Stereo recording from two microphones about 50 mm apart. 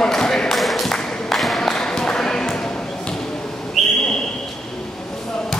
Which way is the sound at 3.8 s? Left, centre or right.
Centre.